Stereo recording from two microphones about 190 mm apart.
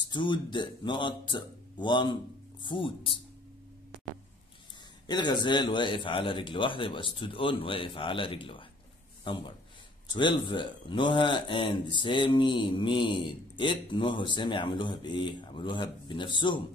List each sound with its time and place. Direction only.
0.1 s speech: 25° left (ahead or behind)
5.0 s speech: 25° left (ahead or behind)
10.1 s speech: 25° left (ahead or behind)